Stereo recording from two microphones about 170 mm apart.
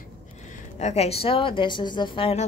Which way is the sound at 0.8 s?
40° left (ahead or behind).